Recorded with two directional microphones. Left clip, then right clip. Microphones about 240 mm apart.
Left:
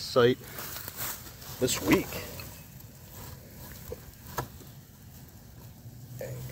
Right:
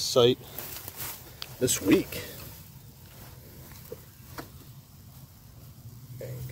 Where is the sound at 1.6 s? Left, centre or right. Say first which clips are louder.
Right 2 dB; centre.